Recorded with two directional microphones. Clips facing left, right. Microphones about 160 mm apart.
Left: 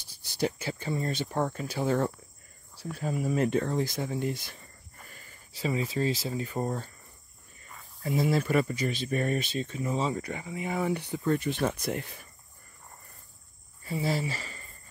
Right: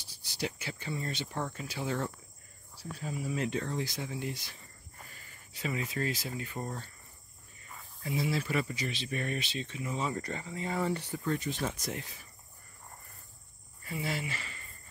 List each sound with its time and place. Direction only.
0.2 s a sound: 50° left (ahead or behind)
0.6 s speech: 40° left (ahead or behind)
5.5 s speech: 30° left (ahead or behind)
8.0 s speech: 45° left (ahead or behind)
10.1 s speech: 10° left (ahead or behind)
11.3 s speech: 60° left (ahead or behind)
13.8 s speech: 35° left (ahead or behind)